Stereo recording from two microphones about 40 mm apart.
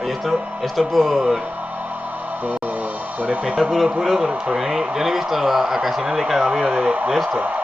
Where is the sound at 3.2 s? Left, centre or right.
Right.